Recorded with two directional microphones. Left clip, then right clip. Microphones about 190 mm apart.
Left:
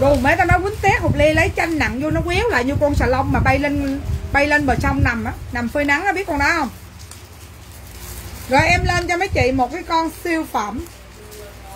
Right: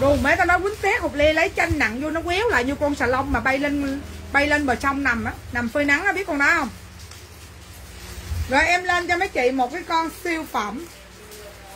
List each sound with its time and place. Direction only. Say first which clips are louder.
0.0 s a woman's voice: left 3 dB; 10° right (ahead or behind)
8.5 s speech: left 3 dB; centre (ahead or behind)